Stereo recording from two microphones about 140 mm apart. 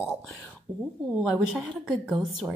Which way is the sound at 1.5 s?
Centre (ahead or behind).